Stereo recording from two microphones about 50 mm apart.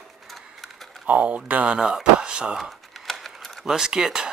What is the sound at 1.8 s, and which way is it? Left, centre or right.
Speech, centre.